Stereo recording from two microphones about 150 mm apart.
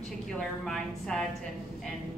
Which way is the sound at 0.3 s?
5° left (ahead or behind).